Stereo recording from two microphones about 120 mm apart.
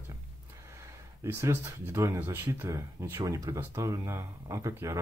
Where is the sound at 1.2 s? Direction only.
20° right (ahead or behind).